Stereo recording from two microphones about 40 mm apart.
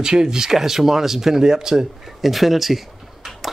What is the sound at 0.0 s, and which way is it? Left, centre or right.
Speech, centre.